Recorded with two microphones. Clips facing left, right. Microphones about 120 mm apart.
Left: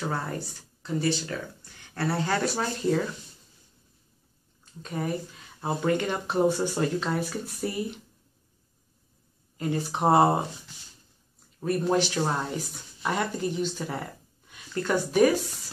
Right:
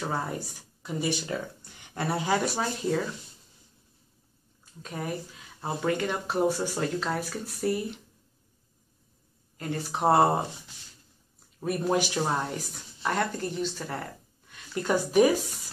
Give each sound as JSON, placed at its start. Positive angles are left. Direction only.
{"t": 0.1, "sound": "speech", "side_deg": -10}
{"t": 4.8, "sound": "speech", "side_deg": -5}
{"t": 9.6, "sound": "speech", "side_deg": 0}
{"t": 11.6, "sound": "speech", "side_deg": -10}
{"t": 14.7, "sound": "speech", "side_deg": -10}